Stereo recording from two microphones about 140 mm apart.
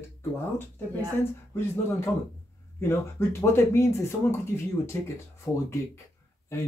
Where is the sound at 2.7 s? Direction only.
20° left (ahead or behind).